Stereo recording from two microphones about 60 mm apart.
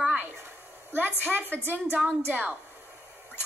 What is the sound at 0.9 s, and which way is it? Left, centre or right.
A woman's voice, right.